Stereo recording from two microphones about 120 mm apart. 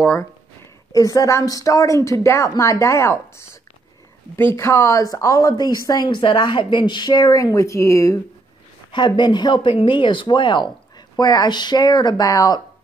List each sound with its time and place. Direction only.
0.0 s speech: 20° left (ahead or behind)
8.9 s speech: 40° left (ahead or behind)